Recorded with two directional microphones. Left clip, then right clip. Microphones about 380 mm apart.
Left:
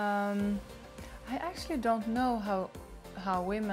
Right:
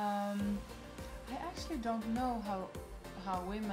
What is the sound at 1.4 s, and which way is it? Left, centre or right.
Speech, left.